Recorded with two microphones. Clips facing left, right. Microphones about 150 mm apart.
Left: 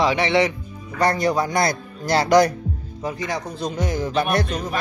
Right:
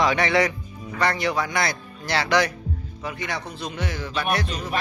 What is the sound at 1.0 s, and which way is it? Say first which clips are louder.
A man's voice: left 4 dB; 45° left (ahead or behind).